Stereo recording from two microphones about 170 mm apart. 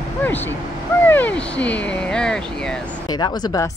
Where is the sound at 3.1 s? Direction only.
25° left (ahead or behind).